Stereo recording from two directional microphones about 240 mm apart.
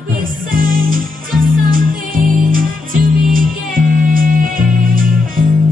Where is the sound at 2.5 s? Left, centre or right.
Right.